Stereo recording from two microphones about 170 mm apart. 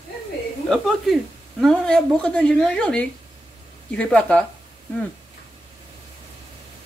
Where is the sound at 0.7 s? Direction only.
Centre (ahead or behind).